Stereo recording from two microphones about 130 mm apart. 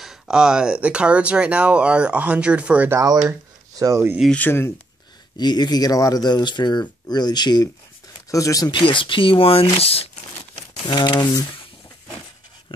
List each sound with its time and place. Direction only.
0.0 s speech: 5° right (ahead or behind)
3.3 s speech: 25° right (ahead or behind)
4.4 s speech: 20° left (ahead or behind)
5.4 s speech: 35° left (ahead or behind)
8.7 s speech: 40° left (ahead or behind)
10.9 s speech: 35° left (ahead or behind)